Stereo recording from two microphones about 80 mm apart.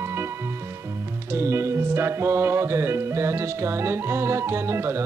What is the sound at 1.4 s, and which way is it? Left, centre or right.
Music, right.